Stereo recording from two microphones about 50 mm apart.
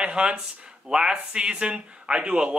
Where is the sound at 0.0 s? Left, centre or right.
Centre.